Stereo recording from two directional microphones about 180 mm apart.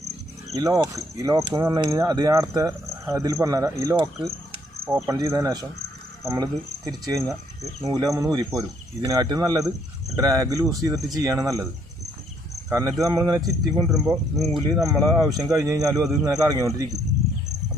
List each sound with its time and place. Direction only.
0.6 s speech: 20° right (ahead or behind)
14.3 s speech: centre (ahead or behind)
14.7 s speech: 20° right (ahead or behind)